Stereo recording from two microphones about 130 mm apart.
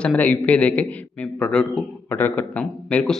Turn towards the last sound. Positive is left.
turn(degrees=5)  # may be behind; listen again after turning